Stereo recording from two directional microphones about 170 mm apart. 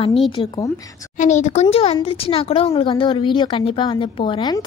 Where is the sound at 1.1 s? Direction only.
45° left (ahead or behind).